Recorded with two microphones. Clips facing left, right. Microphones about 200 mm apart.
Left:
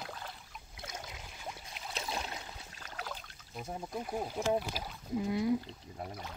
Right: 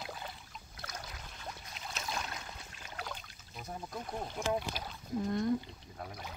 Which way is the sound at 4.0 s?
10° left (ahead or behind).